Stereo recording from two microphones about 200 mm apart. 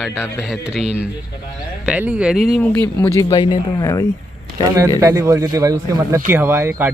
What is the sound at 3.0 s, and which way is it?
Speech, 15° left (ahead or behind).